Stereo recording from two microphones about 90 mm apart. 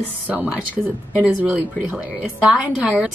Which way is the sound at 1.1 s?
20° right (ahead or behind).